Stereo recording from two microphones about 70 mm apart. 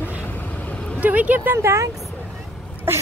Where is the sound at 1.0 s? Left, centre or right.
Right.